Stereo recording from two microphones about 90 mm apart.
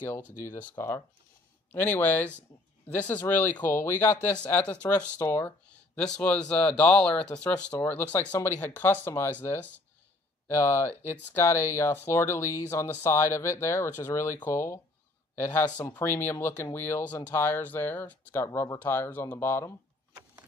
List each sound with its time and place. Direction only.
0.0 s speech: 25° left (ahead or behind)
5.2 s speech: 25° left (ahead or behind)
5.9 s a man's voice: 10° left (ahead or behind); by 18.8 s 30° left (ahead or behind)
18.8 s speech: 20° left (ahead or behind)